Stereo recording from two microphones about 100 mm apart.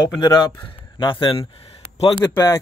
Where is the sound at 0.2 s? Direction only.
45° left (ahead or behind).